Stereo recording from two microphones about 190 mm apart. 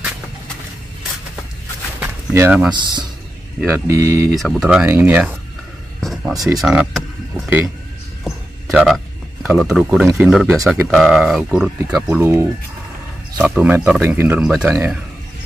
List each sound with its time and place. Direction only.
2.0 s a sound: 10° right (ahead or behind)
2.7 s speech: 25° right (ahead or behind)
4.4 s speech: centre (ahead or behind)
5.9 s a sound: centre (ahead or behind)
6.3 s speech: 20° right (ahead or behind)
6.6 s speech: 5° right (ahead or behind)
7.4 s speech: 10° right (ahead or behind)
8.7 s speech: centre (ahead or behind)
12.1 s speech: 15° right (ahead or behind)